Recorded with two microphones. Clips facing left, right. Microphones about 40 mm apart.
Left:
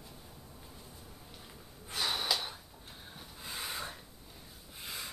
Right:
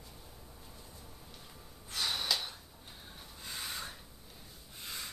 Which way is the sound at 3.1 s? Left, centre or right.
Centre.